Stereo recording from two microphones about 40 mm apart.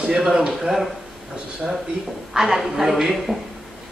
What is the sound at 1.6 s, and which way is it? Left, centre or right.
Speech, right.